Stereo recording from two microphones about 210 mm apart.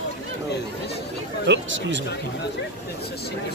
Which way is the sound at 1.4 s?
60° right (ahead or behind).